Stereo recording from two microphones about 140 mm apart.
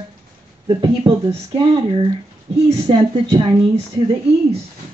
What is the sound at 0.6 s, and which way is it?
A woman's voice, 35° right (ahead or behind).